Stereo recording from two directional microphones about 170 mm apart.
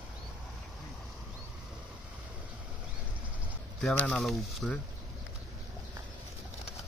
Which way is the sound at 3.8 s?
5° left (ahead or behind).